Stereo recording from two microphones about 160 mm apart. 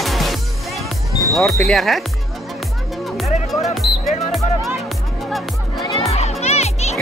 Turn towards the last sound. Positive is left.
turn(degrees=45)  # may be behind; listen again after turning